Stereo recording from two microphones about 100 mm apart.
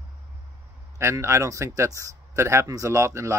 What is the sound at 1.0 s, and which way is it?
Speech, 30° right (ahead or behind).